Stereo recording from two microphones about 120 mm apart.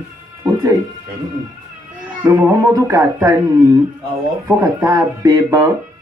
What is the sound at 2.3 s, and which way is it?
Speech, 25° right (ahead or behind).